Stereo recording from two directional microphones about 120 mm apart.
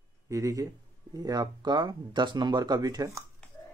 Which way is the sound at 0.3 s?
25° right (ahead or behind).